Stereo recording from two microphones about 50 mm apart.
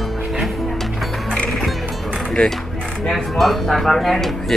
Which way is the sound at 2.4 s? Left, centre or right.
Left.